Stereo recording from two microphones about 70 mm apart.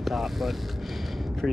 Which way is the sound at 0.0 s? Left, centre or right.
Centre.